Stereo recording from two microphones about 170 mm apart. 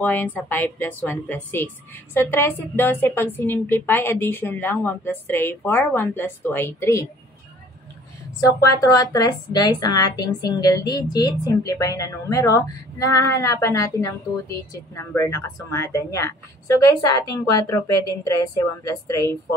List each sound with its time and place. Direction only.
0.0 s a woman's voice: 10° left (ahead or behind)
8.4 s a woman's voice: 20° left (ahead or behind)